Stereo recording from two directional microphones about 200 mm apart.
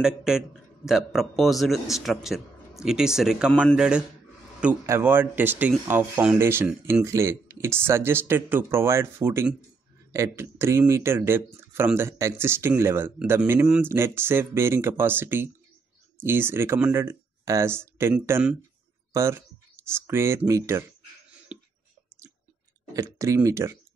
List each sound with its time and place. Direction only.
0.0 s a man's voice: 5° right (ahead or behind)
21.5 s whispering: 5° right (ahead or behind)
22.9 s speech: 15° right (ahead or behind)